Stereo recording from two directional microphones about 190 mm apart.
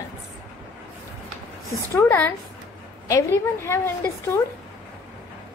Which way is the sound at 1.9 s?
10° left (ahead or behind).